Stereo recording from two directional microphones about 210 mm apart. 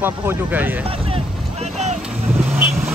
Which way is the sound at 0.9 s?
25° right (ahead or behind).